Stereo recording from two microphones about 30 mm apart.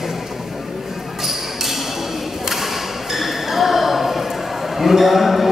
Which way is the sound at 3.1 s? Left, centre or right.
Centre.